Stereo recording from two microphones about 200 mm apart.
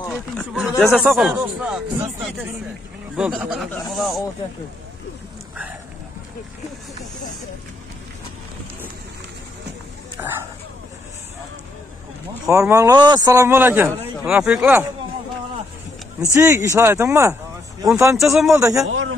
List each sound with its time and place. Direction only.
0.1 s a sound: centre (ahead or behind)
0.8 s speech: 5° right (ahead or behind)
3.2 s speech: 5° right (ahead or behind)
10.2 s speech: 10° right (ahead or behind)
12.4 s speech: 15° right (ahead or behind)
16.3 s speech: 15° right (ahead or behind)
18.9 s speech: 90° right